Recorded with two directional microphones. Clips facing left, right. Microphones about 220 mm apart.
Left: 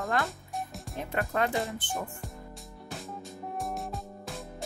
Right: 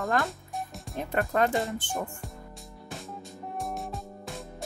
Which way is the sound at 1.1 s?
45° right (ahead or behind).